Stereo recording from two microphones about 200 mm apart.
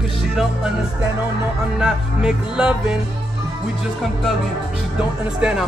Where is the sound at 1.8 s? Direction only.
5° right (ahead or behind).